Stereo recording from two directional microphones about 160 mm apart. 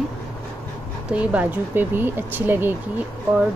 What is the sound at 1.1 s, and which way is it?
Speech, 10° right (ahead or behind).